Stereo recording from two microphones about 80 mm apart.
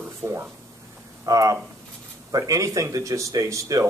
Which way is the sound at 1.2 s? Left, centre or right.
Right.